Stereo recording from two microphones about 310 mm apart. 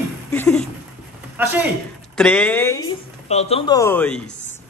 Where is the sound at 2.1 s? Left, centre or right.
Centre.